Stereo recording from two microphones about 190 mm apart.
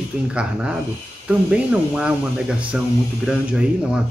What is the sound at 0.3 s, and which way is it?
Speech, 5° right (ahead or behind).